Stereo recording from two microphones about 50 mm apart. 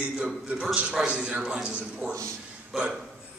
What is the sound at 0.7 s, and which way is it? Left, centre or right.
A man's voice, centre.